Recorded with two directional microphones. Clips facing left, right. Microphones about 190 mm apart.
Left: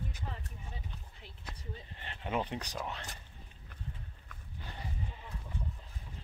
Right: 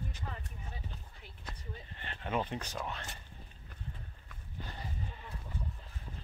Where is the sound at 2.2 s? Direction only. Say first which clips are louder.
Even; 15° left (ahead or behind).